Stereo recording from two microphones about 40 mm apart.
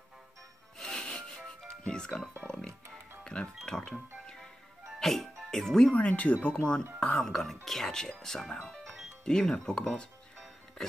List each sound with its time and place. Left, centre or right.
0.7 s music: centre
1.9 s speech: centre
5.0 s speech: centre
5.9 s speech: left
6.5 s speech: left
7.2 s speech: centre; by 10.0 s left